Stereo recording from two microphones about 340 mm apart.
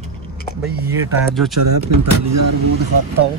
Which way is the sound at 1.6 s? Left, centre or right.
Right.